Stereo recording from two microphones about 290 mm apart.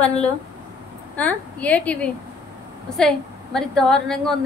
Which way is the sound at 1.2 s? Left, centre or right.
Centre.